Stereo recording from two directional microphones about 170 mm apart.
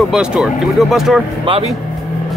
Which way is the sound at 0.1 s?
5° right (ahead or behind).